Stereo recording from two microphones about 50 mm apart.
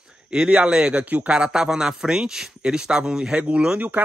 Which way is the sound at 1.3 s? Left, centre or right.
Centre.